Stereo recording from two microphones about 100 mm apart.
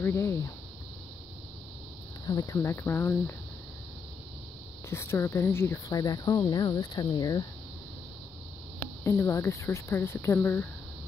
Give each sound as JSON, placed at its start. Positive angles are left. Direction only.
{"t": 0.0, "sound": "speech", "side_deg": 25}
{"t": 2.2, "sound": "speech", "side_deg": 35}
{"t": 4.8, "sound": "speech", "side_deg": 25}
{"t": 5.9, "sound": "speech", "side_deg": 40}
{"t": 9.0, "sound": "speech", "side_deg": 25}